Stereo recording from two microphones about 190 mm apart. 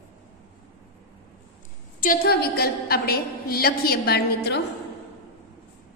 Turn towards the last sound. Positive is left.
turn(degrees=60)  # may be behind; listen again after turning